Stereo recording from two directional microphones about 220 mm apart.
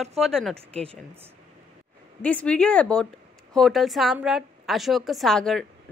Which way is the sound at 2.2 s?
5° left (ahead or behind).